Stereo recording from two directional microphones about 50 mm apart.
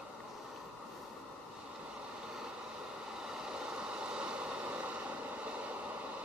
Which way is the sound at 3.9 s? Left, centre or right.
Right.